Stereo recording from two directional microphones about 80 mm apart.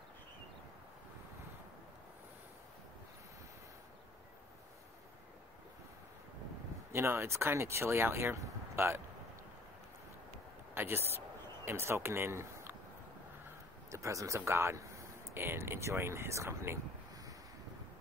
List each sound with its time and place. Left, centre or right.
6.9 s speech: right
10.7 s speech: right
13.8 s speech: right